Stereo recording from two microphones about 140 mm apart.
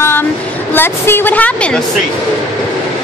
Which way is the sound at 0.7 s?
15° left (ahead or behind).